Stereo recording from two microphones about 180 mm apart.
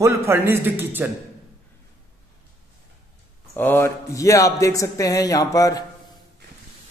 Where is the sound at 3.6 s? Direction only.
10° left (ahead or behind).